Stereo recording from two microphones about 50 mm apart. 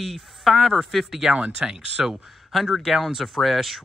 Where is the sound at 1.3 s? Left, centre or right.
Centre.